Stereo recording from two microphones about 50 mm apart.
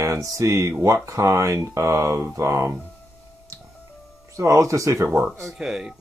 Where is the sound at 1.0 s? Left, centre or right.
Right.